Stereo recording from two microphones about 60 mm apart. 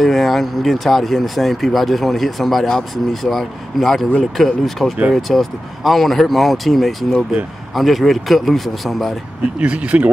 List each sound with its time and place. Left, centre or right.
0.0 s speech: centre
9.6 s speech: centre